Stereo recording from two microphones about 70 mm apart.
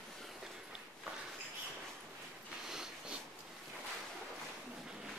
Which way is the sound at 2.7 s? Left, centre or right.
Centre.